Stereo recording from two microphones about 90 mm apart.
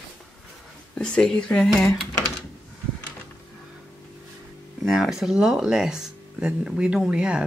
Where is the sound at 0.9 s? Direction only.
10° left (ahead or behind).